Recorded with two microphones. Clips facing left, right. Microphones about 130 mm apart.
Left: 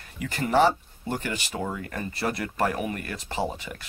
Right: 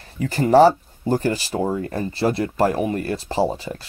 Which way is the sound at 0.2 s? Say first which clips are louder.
Right 8 dB; 35° right (ahead or behind).